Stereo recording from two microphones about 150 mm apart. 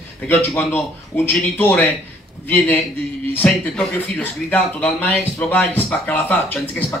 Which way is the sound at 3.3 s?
10° left (ahead or behind).